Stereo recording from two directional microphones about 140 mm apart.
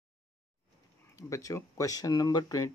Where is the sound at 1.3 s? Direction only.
25° left (ahead or behind).